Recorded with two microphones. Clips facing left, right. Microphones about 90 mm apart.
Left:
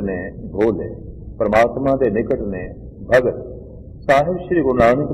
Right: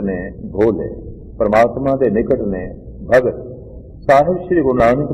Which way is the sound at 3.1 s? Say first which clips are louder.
Right 2 dB; centre (ahead or behind).